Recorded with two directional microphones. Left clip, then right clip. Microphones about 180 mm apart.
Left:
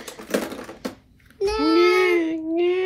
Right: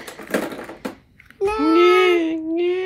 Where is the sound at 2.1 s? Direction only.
Centre (ahead or behind).